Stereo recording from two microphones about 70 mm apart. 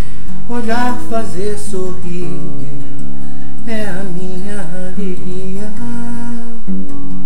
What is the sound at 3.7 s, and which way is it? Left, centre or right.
Music, centre.